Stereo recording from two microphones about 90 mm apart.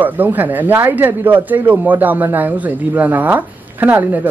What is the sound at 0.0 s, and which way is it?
Speech, 20° right (ahead or behind).